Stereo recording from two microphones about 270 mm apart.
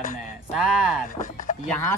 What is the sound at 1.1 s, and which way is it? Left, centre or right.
Chopping, left.